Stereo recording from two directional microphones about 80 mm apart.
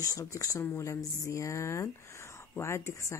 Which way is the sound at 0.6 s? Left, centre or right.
Left.